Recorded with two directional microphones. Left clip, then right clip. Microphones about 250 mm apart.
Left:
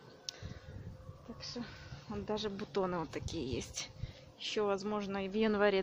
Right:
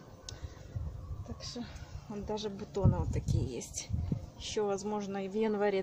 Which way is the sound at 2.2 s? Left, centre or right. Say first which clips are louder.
Even; centre.